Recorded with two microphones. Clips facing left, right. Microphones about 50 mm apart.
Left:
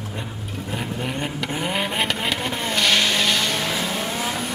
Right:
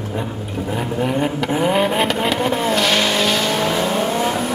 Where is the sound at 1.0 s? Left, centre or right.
Centre.